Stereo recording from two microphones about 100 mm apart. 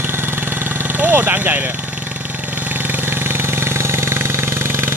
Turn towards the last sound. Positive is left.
turn(degrees=-25)  # may be behind; listen again after turning